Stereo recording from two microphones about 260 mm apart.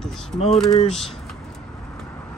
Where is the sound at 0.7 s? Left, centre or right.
Centre.